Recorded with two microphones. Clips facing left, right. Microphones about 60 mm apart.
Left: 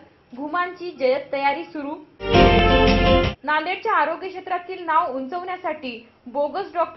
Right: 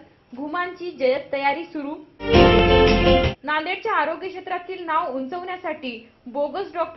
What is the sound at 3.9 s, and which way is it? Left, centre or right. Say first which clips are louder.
Speech: left 2 dB; left.